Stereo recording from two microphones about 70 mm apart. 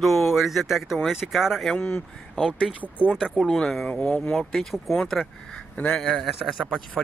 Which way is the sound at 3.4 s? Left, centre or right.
Centre.